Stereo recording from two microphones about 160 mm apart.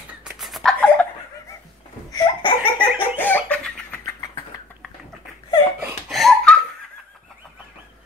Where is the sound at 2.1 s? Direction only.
30° left (ahead or behind).